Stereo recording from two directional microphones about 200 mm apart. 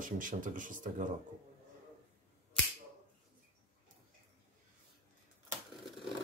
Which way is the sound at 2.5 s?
5° left (ahead or behind).